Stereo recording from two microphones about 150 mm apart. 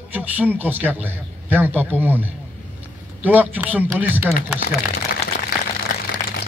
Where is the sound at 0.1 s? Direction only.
10° right (ahead or behind).